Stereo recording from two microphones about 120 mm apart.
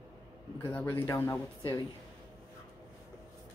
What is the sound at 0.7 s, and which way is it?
Speech, 20° left (ahead or behind).